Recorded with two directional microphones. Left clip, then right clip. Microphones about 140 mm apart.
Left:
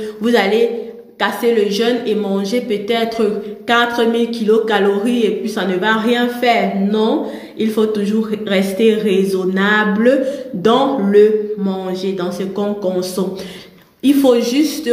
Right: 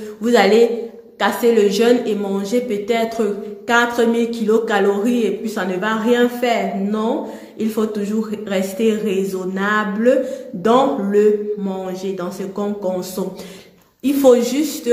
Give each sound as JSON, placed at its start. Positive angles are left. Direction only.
{"t": 0.2, "sound": "speech", "side_deg": -25}
{"t": 14.0, "sound": "speech", "side_deg": -30}